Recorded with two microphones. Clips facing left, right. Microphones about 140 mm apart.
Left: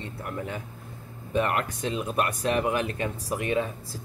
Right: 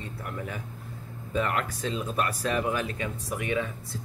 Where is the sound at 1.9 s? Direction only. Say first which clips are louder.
Left 2 dB; 15° left (ahead or behind).